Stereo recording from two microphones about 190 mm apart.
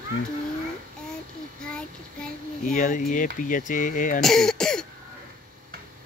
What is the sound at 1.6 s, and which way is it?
Child singing, 5° left (ahead or behind).